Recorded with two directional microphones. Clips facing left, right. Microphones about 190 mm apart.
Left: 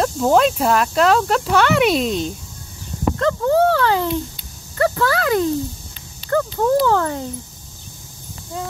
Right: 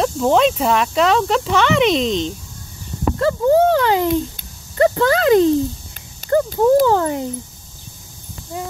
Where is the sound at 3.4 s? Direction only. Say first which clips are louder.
Right 3 dB; 15° right (ahead or behind).